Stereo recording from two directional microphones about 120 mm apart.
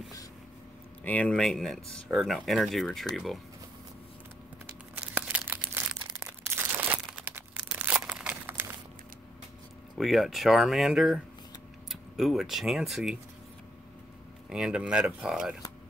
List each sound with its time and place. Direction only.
1.0 s speech: 10° left (ahead or behind)
4.9 s crumpling: 15° right (ahead or behind)
9.9 s speech: centre (ahead or behind)
14.5 s speech: 5° right (ahead or behind)